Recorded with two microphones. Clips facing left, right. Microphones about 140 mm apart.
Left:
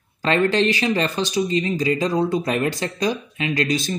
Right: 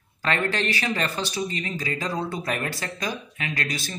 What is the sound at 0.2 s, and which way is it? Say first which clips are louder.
Speech: left 7 dB; 20° left (ahead or behind).